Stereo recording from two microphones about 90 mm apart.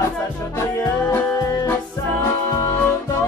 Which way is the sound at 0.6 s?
30° left (ahead or behind).